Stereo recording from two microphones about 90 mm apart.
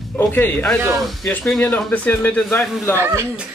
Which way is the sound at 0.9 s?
Centre (ahead or behind).